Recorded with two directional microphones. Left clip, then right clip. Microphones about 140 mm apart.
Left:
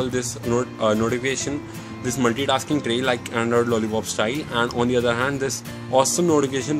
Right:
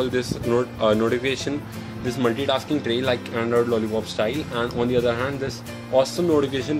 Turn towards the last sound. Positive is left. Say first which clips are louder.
# left 1 dB
turn(degrees=20)  # may be behind; listen again after turning